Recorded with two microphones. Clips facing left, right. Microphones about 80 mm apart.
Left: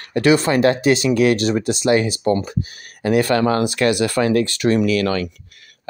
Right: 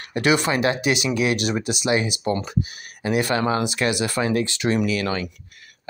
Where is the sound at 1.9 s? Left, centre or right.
Left.